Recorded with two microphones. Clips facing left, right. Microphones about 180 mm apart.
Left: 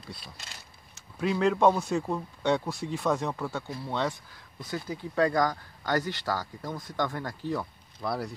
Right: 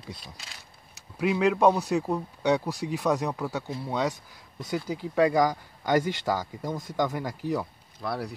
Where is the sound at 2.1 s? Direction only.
15° right (ahead or behind).